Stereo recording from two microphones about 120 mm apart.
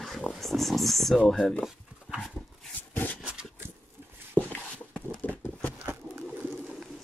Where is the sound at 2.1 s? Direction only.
Centre (ahead or behind).